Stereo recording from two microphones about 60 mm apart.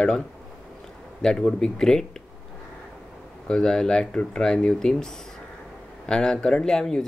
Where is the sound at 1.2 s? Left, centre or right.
Centre.